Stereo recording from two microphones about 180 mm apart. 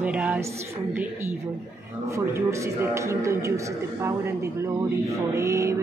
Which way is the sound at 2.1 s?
15° right (ahead or behind).